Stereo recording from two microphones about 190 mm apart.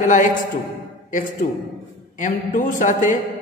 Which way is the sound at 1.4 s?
40° left (ahead or behind).